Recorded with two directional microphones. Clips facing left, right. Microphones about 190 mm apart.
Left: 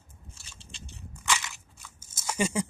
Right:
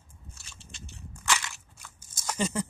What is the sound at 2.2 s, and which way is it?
Patter, 10° left (ahead or behind).